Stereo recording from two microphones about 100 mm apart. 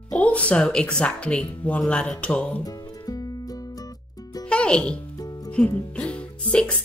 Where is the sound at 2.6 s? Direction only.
40° left (ahead or behind).